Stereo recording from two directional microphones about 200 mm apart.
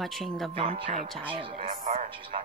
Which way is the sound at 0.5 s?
25° right (ahead or behind).